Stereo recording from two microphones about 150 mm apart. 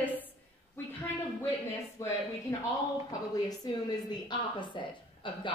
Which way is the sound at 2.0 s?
20° left (ahead or behind).